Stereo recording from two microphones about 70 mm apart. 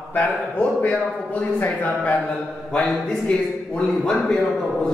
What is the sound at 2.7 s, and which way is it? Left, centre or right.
A man's voice, centre.